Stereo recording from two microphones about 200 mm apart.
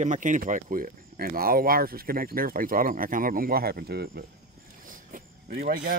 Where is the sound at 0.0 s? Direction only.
40° right (ahead or behind).